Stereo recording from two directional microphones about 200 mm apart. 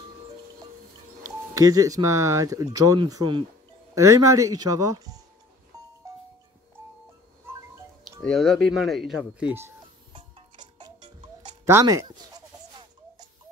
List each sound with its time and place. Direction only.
1.5 s speech: 15° right (ahead or behind)
6.0 s music: 15° right (ahead or behind)
8.2 s speech: centre (ahead or behind)
10.1 s music: 25° right (ahead or behind)
11.7 s a sound: 15° right (ahead or behind)